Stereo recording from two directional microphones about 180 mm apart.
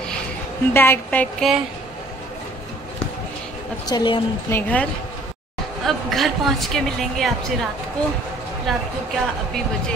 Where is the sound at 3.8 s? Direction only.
25° left (ahead or behind).